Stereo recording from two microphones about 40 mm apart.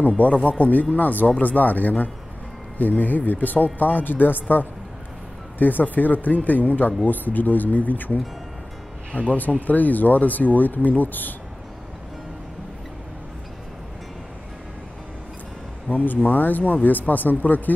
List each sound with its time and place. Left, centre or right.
0.2 s speech: left
9.3 s speech: left
15.9 s speech: left